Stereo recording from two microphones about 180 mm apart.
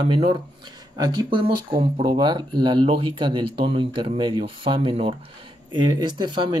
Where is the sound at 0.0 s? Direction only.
30° right (ahead or behind).